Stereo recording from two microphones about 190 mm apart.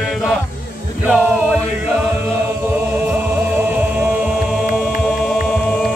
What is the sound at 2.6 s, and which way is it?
Chant, 10° right (ahead or behind).